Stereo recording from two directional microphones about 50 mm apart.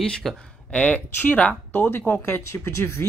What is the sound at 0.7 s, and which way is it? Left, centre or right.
Speech, left.